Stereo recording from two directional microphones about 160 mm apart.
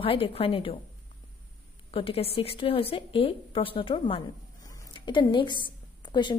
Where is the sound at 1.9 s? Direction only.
35° left (ahead or behind).